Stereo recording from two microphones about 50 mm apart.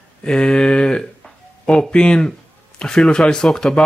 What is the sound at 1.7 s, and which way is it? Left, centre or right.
A man's voice, centre.